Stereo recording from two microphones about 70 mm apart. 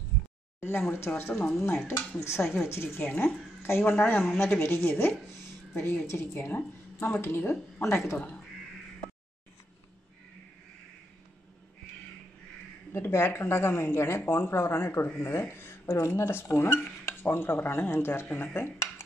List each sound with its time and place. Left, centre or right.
0.6 s speech: left
3.0 s speech: left
12.9 s speech: left